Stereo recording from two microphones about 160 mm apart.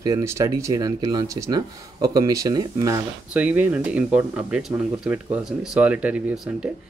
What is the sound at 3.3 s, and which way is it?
Speech, 10° right (ahead or behind).